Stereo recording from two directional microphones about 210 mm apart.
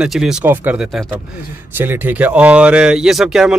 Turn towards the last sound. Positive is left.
turn(degrees=0)  # may be behind; listen again after turning